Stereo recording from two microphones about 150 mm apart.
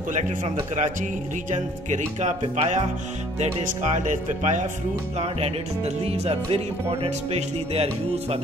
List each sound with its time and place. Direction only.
0.2 s a man's voice: 55° right (ahead or behind)
1.5 s music: 50° right (ahead or behind)
5.1 s music: 45° right (ahead or behind)